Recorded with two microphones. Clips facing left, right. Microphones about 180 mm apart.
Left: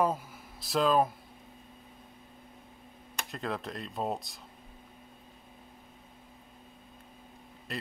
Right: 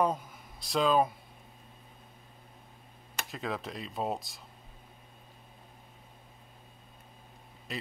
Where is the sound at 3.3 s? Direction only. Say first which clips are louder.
Left 1 dB; centre (ahead or behind).